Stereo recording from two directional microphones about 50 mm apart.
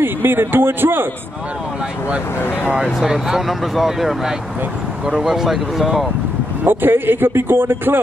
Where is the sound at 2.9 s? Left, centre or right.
Centre.